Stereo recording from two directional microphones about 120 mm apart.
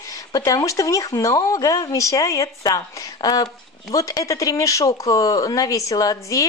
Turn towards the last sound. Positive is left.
turn(degrees=30)  # may be behind; listen again after turning